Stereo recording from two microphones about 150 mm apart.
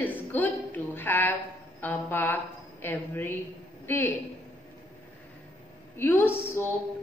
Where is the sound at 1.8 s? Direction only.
15° left (ahead or behind).